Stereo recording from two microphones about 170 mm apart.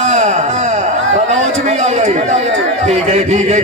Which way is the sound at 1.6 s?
40° right (ahead or behind).